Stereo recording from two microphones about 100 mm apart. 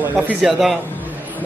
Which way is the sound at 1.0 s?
15° right (ahead or behind).